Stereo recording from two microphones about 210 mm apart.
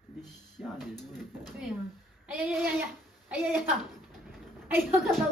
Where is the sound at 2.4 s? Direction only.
5° right (ahead or behind).